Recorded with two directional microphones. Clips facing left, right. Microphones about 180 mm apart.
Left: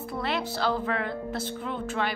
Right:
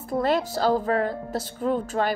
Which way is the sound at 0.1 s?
45° right (ahead or behind).